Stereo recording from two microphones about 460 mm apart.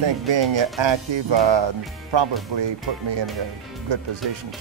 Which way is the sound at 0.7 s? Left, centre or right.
Right.